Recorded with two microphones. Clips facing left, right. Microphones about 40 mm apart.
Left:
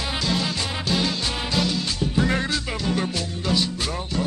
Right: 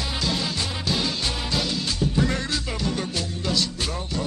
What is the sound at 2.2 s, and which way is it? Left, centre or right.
Music, centre.